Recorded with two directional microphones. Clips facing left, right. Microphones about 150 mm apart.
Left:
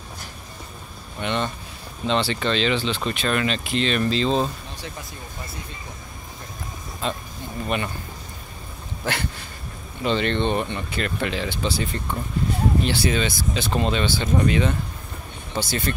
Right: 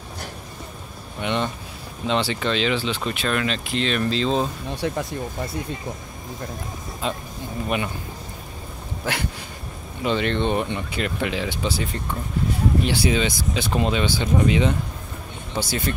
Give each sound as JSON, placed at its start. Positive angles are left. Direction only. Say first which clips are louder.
{"t": 1.2, "sound": "speech", "louder": "right 1 dB", "side_deg": -15}
{"t": 4.7, "sound": "speech", "louder": "right 11 dB", "side_deg": -65}
{"t": 7.0, "sound": "speech", "louder": "even", "side_deg": -15}
{"t": 9.1, "sound": "speech", "louder": "even", "side_deg": -10}